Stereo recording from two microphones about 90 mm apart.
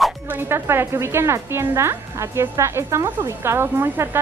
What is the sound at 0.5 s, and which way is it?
A woman's voice, 25° right (ahead or behind).